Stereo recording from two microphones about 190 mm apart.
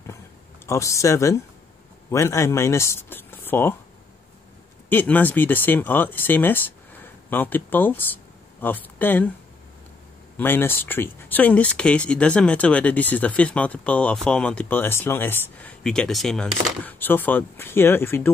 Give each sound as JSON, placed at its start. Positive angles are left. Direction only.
{"t": 0.7, "sound": "speech", "side_deg": 15}
{"t": 4.8, "sound": "speech", "side_deg": 10}
{"t": 10.3, "sound": "speech", "side_deg": 10}